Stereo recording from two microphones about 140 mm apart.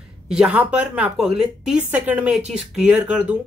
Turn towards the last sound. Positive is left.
turn(degrees=-10)  # may be behind; listen again after turning